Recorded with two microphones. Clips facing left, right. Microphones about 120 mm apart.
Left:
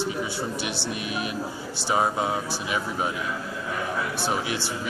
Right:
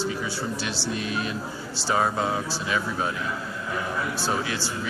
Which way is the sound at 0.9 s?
15° left (ahead or behind).